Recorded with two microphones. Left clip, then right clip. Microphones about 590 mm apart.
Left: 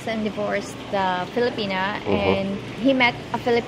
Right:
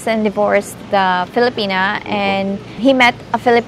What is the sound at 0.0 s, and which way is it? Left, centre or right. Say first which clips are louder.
A woman's voice: right 11 dB; right.